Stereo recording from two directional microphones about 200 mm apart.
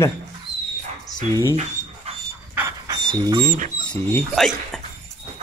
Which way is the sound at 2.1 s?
30° right (ahead or behind).